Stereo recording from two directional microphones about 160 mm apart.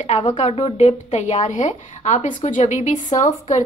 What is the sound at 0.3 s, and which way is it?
A woman's voice, 40° left (ahead or behind).